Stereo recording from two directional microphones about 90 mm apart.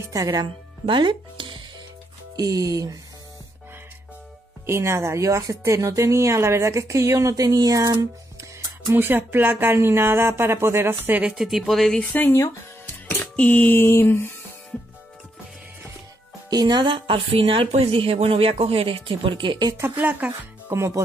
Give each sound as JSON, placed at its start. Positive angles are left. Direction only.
{"t": 0.3, "sound": "speech", "side_deg": -60}
{"t": 2.3, "sound": "speech", "side_deg": -45}
{"t": 4.6, "sound": "speech", "side_deg": -30}
{"t": 8.5, "sound": "music", "side_deg": -40}
{"t": 8.9, "sound": "speech", "side_deg": -25}
{"t": 11.2, "sound": "speech", "side_deg": -5}
{"t": 12.0, "sound": "speech", "side_deg": 15}
{"t": 12.3, "sound": "speech", "side_deg": 35}
{"t": 13.2, "sound": "speech", "side_deg": 20}
{"t": 13.8, "sound": "a sound", "side_deg": 30}
{"t": 16.4, "sound": "speech", "side_deg": -50}
{"t": 19.8, "sound": "speech", "side_deg": -20}
{"t": 20.7, "sound": "speech", "side_deg": -30}